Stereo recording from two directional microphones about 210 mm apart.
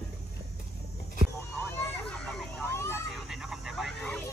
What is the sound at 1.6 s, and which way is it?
Vehicle, 5° left (ahead or behind).